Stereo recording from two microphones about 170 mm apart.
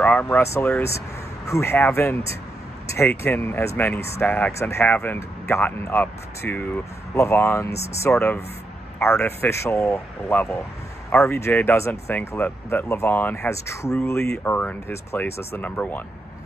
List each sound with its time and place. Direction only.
0.0 s speech: 10° left (ahead or behind)